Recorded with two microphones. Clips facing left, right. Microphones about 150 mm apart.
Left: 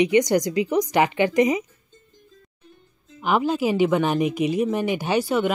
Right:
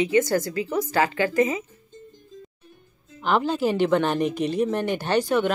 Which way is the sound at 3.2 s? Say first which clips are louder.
Left 1 dB; 10° left (ahead or behind).